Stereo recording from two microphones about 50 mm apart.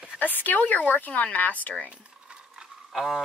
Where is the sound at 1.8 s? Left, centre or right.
Right.